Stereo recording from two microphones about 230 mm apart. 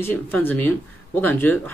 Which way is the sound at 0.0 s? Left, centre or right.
Centre.